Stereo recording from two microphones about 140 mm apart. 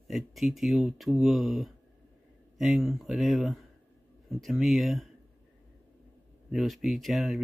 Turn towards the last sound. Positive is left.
turn(degrees=0)  # may be behind; listen again after turning